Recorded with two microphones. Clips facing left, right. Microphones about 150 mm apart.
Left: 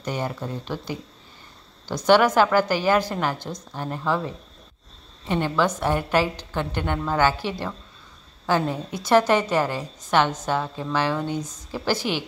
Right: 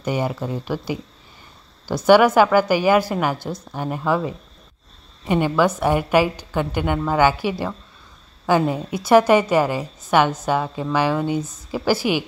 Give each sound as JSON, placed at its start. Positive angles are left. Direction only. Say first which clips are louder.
{"t": 0.0, "sound": "a woman's voice", "louder": "right 5 dB", "side_deg": -10}